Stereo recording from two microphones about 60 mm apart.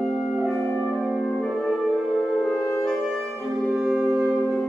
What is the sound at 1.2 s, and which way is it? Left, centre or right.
Music, centre.